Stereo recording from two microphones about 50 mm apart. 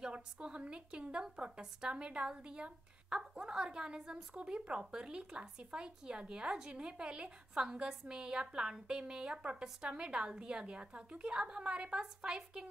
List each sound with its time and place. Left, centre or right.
0.0 s a woman's voice: centre